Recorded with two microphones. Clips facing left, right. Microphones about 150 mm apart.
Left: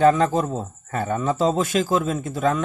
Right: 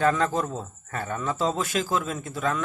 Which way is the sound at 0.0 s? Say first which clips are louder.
Left 6 dB; 25° left (ahead or behind).